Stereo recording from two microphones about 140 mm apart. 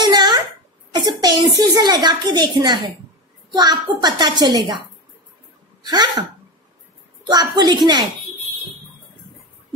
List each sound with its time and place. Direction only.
0.0 s wail: 30° right (ahead or behind)
1.0 s a child's voice: 30° right (ahead or behind)
5.9 s a child's voice: 30° right (ahead or behind)
7.2 s a child's voice: 30° right (ahead or behind)